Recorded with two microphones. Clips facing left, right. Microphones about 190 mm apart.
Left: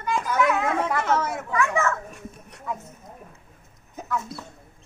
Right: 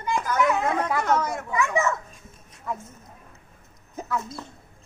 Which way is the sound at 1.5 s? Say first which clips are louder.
Even; 15° right (ahead or behind).